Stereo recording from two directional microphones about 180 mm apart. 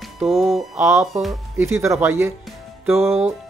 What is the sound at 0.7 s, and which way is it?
Speech, 15° right (ahead or behind).